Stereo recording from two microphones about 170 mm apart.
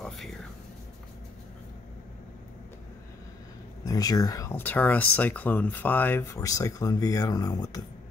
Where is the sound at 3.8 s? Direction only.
20° left (ahead or behind).